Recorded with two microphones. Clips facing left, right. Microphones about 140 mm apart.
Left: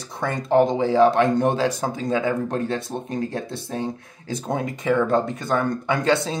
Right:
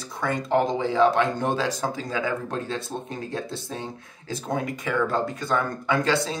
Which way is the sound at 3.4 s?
20° left (ahead or behind).